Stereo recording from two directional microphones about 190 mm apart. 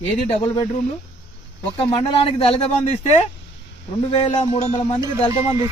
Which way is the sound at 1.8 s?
30° left (ahead or behind).